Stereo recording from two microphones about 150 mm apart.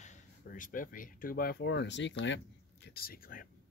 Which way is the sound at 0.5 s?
65° left (ahead or behind).